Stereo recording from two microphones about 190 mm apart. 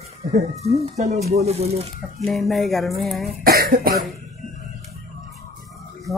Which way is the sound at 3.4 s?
50° right (ahead or behind).